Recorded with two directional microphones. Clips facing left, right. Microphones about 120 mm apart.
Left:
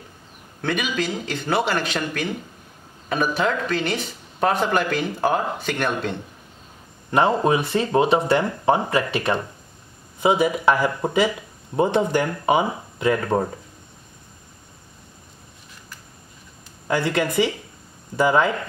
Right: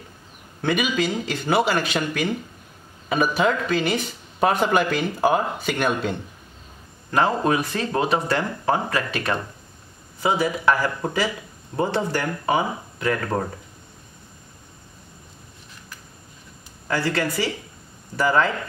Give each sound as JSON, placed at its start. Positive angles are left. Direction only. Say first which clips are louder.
{"t": 0.6, "sound": "speech", "louder": "right 2 dB", "side_deg": -5}
{"t": 7.1, "sound": "a man's voice", "louder": "left 2 dB", "side_deg": 20}
{"t": 16.8, "sound": "a man's voice", "louder": "left 2 dB", "side_deg": 20}